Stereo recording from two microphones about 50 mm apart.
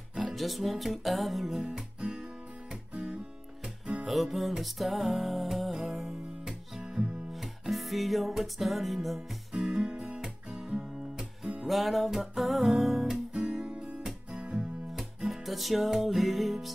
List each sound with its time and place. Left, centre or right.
0.1 s music: centre
1.7 s music: centre
4.0 s music: centre
6.8 s music: centre
7.3 s music: centre
9.5 s music: centre
11.6 s music: centre
13.3 s guitar: right
14.3 s music: right
15.2 s music: centre